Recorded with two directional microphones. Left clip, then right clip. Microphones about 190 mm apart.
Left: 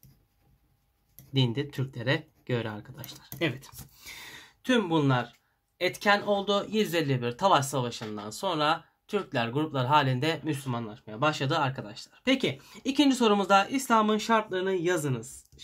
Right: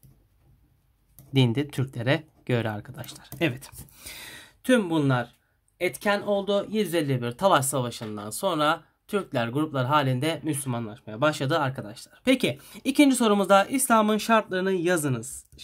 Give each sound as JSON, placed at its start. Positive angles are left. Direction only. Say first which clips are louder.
{"t": 1.3, "sound": "speech", "louder": "right 4 dB", "side_deg": -50}